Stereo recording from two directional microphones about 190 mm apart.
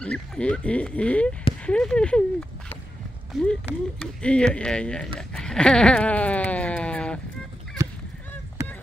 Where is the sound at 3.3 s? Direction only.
5° left (ahead or behind).